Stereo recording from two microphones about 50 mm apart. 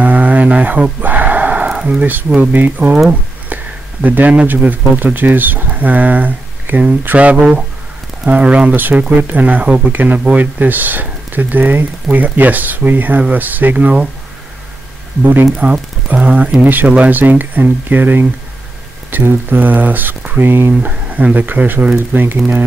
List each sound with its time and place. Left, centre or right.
0.0 s a sound: right
1.0 s gasp: right
1.7 s a sound: right
2.5 s speech: right
3.4 s a sound: right
4.5 s speech: right
7.2 s speech: right
15.6 s speech: right
20.8 s speech: right